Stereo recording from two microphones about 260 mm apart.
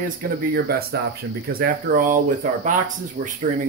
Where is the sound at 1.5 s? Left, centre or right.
Right.